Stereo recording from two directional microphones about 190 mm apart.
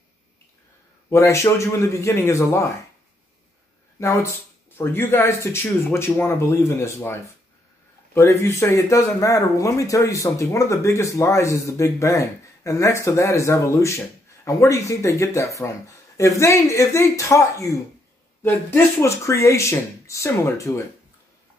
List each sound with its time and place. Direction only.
1.1 s speech: 15° left (ahead or behind)
4.0 s speech: 15° left (ahead or behind)